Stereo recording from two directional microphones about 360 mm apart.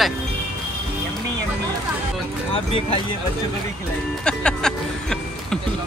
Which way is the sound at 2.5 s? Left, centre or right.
Centre.